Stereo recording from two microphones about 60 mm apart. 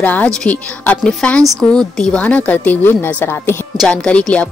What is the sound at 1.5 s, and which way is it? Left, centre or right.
Speech, centre.